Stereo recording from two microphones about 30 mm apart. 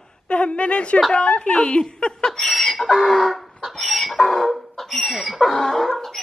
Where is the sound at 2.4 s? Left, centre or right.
Centre.